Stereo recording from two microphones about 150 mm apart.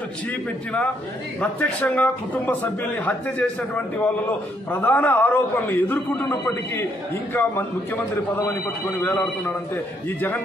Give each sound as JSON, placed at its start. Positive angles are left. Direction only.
{"t": 1.4, "sound": "a man's voice", "side_deg": 10}